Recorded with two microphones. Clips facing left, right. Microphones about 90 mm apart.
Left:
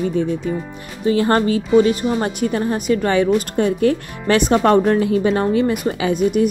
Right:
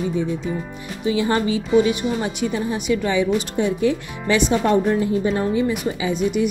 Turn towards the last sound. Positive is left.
turn(degrees=50)  # may be behind; listen again after turning